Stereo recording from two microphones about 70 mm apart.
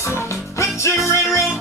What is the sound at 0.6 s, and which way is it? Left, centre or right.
Music, left.